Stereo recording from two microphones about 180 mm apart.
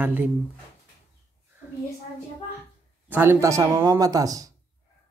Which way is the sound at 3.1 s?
15° right (ahead or behind).